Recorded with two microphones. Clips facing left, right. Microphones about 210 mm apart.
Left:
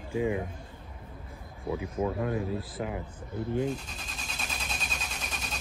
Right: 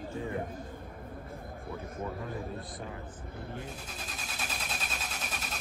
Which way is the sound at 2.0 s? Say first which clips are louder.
Left 8 dB; 90° left.